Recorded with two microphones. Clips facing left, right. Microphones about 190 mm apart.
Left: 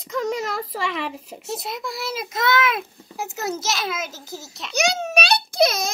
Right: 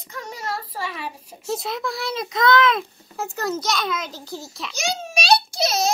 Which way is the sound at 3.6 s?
5° left (ahead or behind).